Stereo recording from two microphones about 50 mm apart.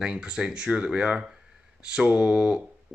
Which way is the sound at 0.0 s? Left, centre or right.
Centre.